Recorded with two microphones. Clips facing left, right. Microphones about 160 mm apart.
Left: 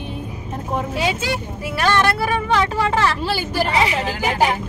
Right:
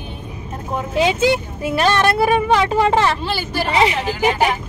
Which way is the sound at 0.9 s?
20° right (ahead or behind).